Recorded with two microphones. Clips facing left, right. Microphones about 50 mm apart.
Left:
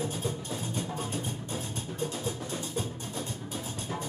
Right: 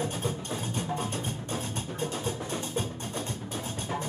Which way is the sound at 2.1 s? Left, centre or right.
Right.